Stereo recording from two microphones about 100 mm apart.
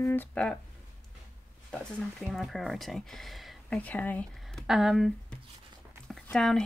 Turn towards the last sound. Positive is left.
turn(degrees=5)  # may be behind; listen again after turning